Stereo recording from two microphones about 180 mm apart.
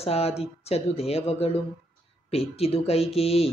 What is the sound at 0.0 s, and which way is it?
Speech, 35° left (ahead or behind).